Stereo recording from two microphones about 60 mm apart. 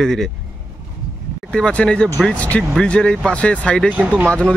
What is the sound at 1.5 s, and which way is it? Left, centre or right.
Speech, centre.